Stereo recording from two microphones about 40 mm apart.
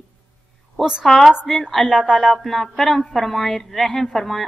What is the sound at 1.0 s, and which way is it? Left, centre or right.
Speech, centre.